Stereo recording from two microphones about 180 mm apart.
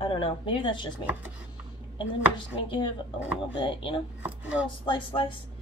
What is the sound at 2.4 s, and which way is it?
Speech, 30° left (ahead or behind).